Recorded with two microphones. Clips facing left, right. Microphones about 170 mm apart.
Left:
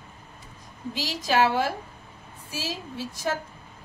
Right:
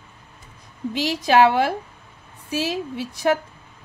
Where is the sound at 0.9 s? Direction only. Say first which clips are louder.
Right 7 dB; 65° right (ahead or behind).